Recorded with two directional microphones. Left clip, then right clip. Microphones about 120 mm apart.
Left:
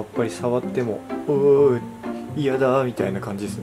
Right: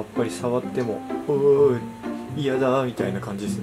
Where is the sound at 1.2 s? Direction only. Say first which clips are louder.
Left 2 dB; 30° left (ahead or behind).